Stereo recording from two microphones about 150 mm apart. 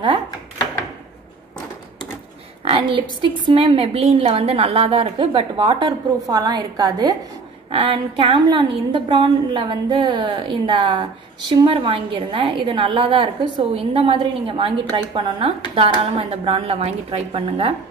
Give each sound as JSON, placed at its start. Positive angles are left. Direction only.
{"t": 2.6, "sound": "a woman's voice", "side_deg": -35}